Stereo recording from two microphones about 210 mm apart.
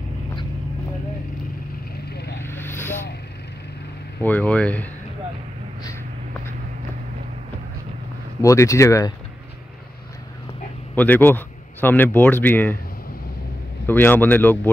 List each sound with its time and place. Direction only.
2.0 s vehicle: 50° left (ahead or behind)
2.4 s vehicle: 10° left (ahead or behind)
4.2 s speech: 5° left (ahead or behind)
8.4 s speech: 15° left (ahead or behind)
11.0 s speech: 10° left (ahead or behind)
13.8 s speech: 10° left (ahead or behind)